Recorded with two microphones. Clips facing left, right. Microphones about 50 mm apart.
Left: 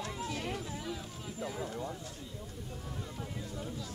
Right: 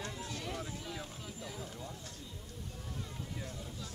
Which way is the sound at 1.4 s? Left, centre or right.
Left.